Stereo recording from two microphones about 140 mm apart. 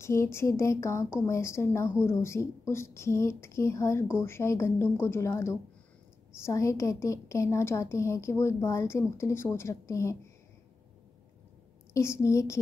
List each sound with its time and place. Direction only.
0.0 s a woman's voice: 20° left (ahead or behind)
11.9 s a woman's voice: 20° left (ahead or behind)